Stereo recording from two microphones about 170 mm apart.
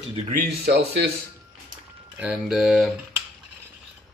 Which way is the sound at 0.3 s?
65° right (ahead or behind).